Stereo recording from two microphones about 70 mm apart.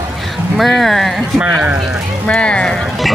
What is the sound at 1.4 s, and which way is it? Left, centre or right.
Speech, right.